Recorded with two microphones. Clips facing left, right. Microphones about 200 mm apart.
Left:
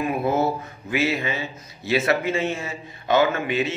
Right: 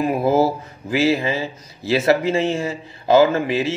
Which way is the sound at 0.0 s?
30° right (ahead or behind).